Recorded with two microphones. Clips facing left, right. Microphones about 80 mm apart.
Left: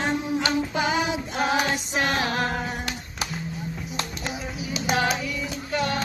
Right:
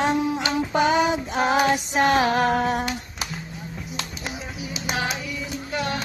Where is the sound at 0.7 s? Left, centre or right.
Right.